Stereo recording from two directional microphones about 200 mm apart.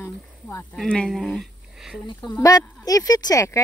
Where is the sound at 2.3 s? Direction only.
15° left (ahead or behind).